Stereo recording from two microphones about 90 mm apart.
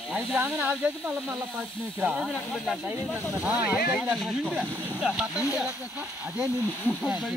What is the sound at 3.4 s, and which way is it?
Speech, 10° right (ahead or behind).